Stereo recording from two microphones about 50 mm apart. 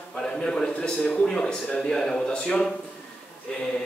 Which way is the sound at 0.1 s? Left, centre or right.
Centre.